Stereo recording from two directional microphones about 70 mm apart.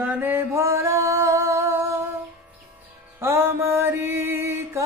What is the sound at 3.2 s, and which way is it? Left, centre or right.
Mantra, right.